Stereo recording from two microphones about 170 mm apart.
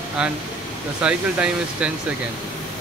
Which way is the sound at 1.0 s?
5° right (ahead or behind).